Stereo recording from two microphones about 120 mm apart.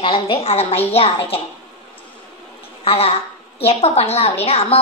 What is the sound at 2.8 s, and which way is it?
A woman's voice, 55° left (ahead or behind).